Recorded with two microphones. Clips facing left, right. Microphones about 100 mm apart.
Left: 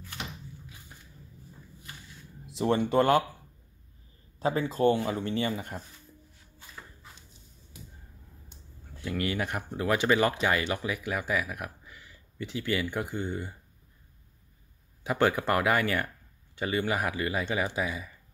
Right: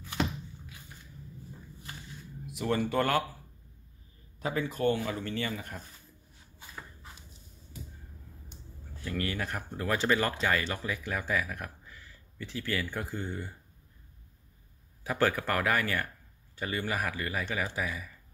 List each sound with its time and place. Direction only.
2.4 s speech: 30° left (ahead or behind)
4.4 s speech: 30° left (ahead or behind)
9.0 s speech: 15° left (ahead or behind)
15.0 s speech: 20° left (ahead or behind)